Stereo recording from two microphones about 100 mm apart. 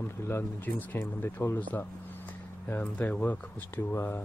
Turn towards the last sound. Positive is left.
turn(degrees=20)  # may be behind; listen again after turning